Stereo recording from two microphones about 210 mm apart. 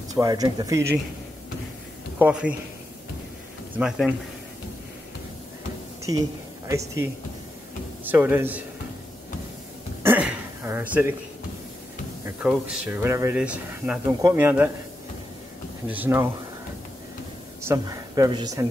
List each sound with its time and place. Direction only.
0.1 s speech: 15° right (ahead or behind)
2.1 s a man's voice: 5° right (ahead or behind)
3.7 s speech: 5° right (ahead or behind)
8.0 s speech: 10° right (ahead or behind)
10.0 s a sound: 10° right (ahead or behind)
12.3 s speech: 5° right (ahead or behind)
15.9 s speech: 10° right (ahead or behind)
17.6 s a woman's voice: 15° right (ahead or behind)